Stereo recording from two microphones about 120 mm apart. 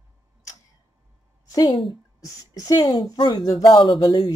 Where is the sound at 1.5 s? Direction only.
30° left (ahead or behind).